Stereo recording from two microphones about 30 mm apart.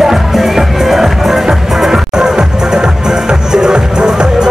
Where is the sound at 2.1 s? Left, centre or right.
Right.